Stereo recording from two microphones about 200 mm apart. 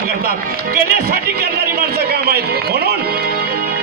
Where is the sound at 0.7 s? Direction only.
50° right (ahead or behind).